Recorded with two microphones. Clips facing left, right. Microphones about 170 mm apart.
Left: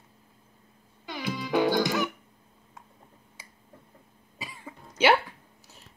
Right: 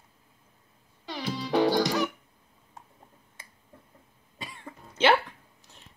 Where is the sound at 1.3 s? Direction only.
35° right (ahead or behind).